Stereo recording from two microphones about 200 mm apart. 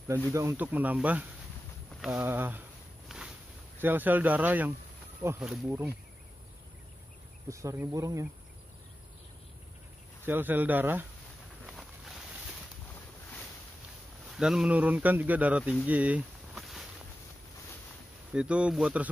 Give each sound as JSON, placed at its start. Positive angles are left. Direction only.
{"t": 0.3, "sound": "speech", "side_deg": -15}
{"t": 3.1, "sound": "a sound", "side_deg": -5}
{"t": 3.8, "sound": "speech", "side_deg": -10}
{"t": 7.4, "sound": "speech", "side_deg": -15}
{"t": 10.2, "sound": "speech", "side_deg": -10}
{"t": 11.6, "sound": "boat", "side_deg": 0}
{"t": 14.3, "sound": "speech", "side_deg": -5}
{"t": 15.8, "sound": "a sound", "side_deg": -5}
{"t": 18.3, "sound": "speech", "side_deg": -5}